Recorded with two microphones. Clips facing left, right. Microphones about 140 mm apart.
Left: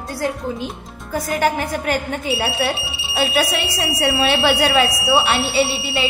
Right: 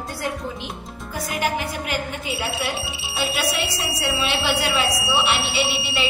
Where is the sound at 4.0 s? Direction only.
50° left (ahead or behind).